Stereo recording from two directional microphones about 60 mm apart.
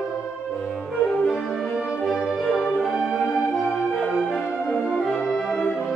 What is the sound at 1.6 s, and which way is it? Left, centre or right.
Music, centre.